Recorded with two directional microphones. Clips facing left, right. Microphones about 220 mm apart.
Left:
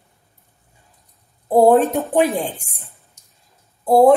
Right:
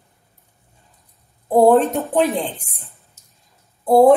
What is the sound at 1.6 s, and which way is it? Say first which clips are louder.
Speech: even; centre (ahead or behind).